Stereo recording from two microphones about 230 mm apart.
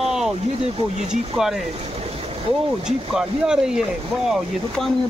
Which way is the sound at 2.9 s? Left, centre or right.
Centre.